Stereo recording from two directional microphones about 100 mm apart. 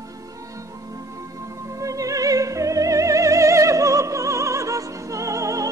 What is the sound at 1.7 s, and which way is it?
Music, 35° right (ahead or behind).